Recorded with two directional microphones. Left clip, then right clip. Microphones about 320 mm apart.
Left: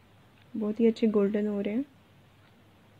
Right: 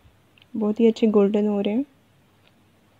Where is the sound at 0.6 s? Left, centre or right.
Centre.